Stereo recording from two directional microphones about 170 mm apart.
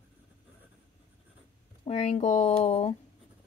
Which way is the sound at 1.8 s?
40° left (ahead or behind).